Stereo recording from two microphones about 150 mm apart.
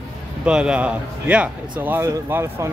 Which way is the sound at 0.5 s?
5° right (ahead or behind).